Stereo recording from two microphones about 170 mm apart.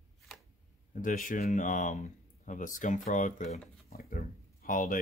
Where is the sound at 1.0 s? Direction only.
50° left (ahead or behind).